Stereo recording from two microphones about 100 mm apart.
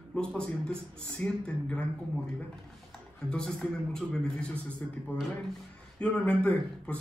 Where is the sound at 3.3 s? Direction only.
5° left (ahead or behind).